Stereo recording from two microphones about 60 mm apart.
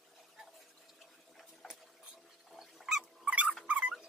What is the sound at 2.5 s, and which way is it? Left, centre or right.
Rodents, centre.